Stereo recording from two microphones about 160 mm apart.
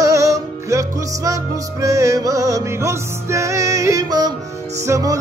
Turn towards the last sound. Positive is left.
turn(degrees=-20)  # may be behind; listen again after turning